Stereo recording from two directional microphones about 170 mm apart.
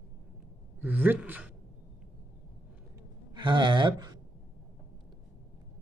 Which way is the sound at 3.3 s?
25° right (ahead or behind).